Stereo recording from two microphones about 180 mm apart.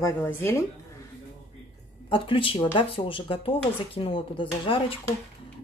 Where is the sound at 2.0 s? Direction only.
30° left (ahead or behind).